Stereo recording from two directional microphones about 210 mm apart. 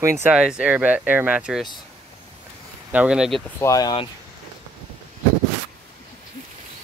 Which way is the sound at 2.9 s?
5° right (ahead or behind).